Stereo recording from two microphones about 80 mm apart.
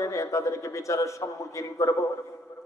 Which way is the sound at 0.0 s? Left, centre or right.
Left.